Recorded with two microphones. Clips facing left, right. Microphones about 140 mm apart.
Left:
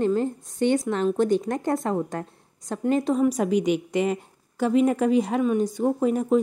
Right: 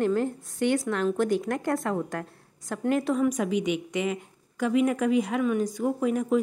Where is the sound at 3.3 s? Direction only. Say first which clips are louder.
Left 4 dB; 40° left (ahead or behind).